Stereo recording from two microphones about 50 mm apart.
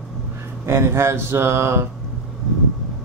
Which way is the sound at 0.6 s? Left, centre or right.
Right.